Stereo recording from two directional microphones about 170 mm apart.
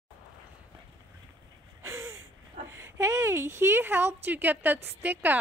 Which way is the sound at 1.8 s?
15° right (ahead or behind).